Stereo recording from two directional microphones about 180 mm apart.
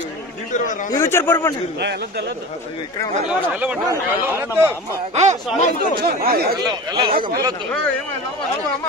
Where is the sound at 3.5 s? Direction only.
5° right (ahead or behind).